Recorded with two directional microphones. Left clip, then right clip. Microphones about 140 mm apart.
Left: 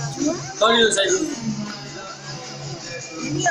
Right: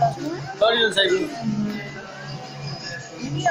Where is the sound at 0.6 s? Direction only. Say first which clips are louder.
Left 2 dB; 45° left (ahead or behind).